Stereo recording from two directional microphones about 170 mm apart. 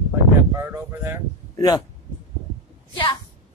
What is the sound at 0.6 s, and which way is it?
Speech, 15° right (ahead or behind).